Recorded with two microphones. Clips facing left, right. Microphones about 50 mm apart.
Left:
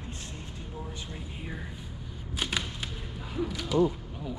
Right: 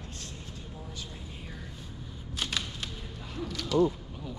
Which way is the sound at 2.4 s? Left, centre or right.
Centre.